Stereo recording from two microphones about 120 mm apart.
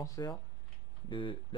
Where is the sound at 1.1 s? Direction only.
45° left (ahead or behind).